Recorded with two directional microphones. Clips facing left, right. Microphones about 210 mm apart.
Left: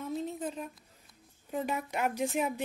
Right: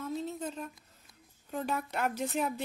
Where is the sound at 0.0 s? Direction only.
15° left (ahead or behind).